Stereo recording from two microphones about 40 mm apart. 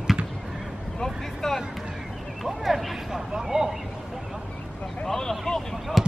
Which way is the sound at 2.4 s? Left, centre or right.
Centre.